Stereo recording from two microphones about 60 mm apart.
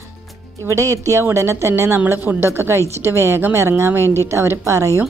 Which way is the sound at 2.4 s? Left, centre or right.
Right.